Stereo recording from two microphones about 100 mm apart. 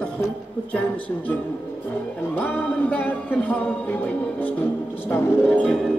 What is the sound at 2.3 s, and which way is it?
Music, 15° left (ahead or behind).